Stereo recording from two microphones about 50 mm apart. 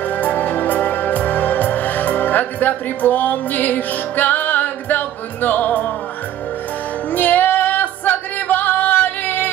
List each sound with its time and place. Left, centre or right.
0.1 s music: left
7.1 s music: left